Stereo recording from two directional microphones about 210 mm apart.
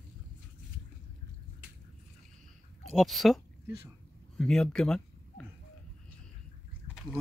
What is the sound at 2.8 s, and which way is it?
Speech, centre (ahead or behind).